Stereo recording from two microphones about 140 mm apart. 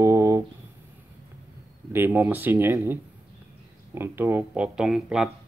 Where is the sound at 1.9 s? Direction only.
15° right (ahead or behind).